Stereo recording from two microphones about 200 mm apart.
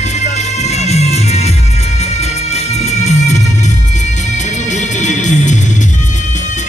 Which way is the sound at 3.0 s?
35° left (ahead or behind).